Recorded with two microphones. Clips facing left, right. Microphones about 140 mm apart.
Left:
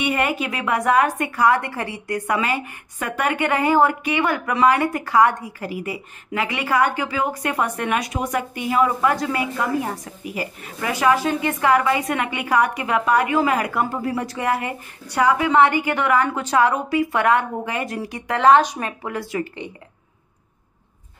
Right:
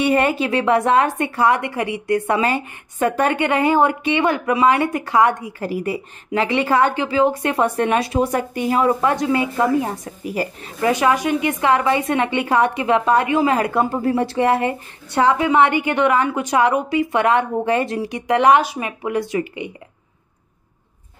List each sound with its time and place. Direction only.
0.0 s a woman's voice: 35° right (ahead or behind)
5.6 s a woman's voice: 35° right (ahead or behind)
9.1 s a woman's voice: 25° right (ahead or behind)
10.2 s a woman's voice: 40° right (ahead or behind); by 19.7 s 10° right (ahead or behind)